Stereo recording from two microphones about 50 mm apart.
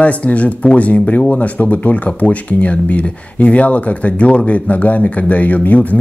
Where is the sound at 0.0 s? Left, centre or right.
Left.